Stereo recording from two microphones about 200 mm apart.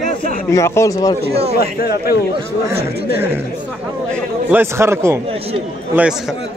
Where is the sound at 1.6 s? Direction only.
50° left (ahead or behind).